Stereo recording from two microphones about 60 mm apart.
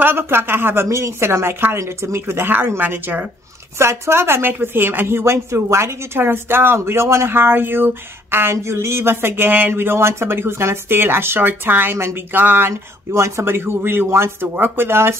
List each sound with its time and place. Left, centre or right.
0.0 s speech: right
0.8 s speech: right
3.7 s speech: right
6.8 s speech: right
13.1 s speech: right